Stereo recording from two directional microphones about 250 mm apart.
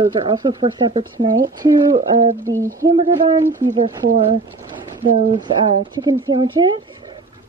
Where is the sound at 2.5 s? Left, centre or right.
Centre.